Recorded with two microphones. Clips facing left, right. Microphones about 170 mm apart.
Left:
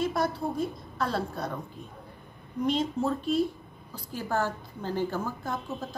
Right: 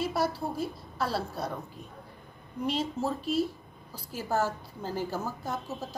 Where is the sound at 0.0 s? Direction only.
5° right (ahead or behind).